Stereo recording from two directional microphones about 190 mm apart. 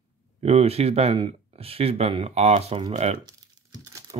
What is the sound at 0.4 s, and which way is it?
Speech, 35° right (ahead or behind).